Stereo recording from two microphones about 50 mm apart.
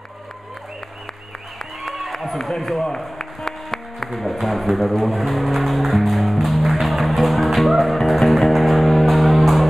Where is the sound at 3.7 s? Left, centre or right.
Centre.